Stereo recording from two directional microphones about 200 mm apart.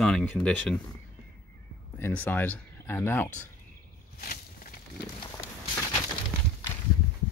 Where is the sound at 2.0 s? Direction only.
10° left (ahead or behind).